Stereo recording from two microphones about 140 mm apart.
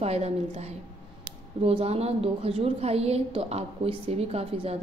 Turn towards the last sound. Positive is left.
turn(degrees=-45)  # may be behind; listen again after turning